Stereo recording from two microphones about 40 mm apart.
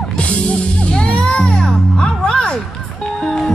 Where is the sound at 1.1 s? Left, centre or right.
Left.